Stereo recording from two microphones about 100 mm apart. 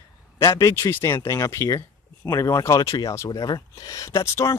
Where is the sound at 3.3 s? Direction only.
40° left (ahead or behind).